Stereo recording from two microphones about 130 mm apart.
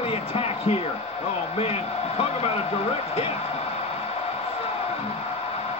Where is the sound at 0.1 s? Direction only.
50° left (ahead or behind).